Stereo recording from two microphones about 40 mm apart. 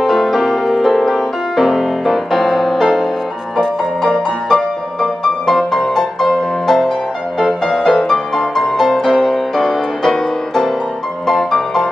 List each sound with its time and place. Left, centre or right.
0.0 s music: centre
5.6 s music: centre
7.9 s music: centre